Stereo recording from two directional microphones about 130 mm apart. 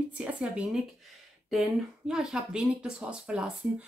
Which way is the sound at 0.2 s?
10° right (ahead or behind).